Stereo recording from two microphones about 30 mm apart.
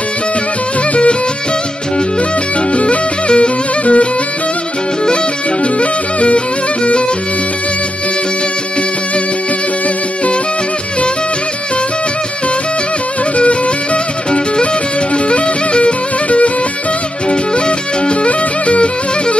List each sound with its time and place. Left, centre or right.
2.7 s music: left
5.6 s music: left
15.2 s music: left